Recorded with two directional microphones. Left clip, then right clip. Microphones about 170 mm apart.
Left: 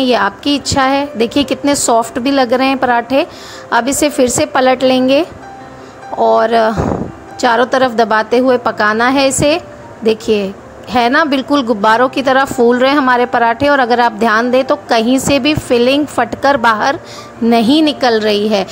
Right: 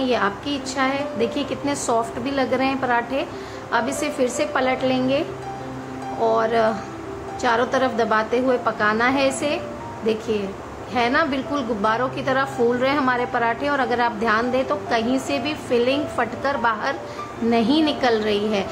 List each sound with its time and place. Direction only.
0.0 s a woman's voice: 55° left (ahead or behind)
6.2 s a woman's voice: 55° left (ahead or behind)